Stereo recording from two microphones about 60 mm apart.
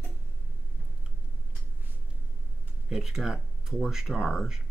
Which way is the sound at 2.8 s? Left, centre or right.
Centre.